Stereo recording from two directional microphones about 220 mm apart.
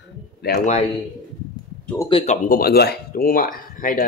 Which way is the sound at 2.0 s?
25° left (ahead or behind).